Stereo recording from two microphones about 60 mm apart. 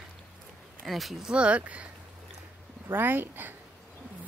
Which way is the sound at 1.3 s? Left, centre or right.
Centre.